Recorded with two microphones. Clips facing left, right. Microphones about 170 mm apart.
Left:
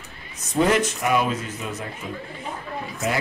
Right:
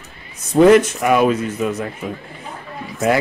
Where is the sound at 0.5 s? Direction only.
70° right (ahead or behind).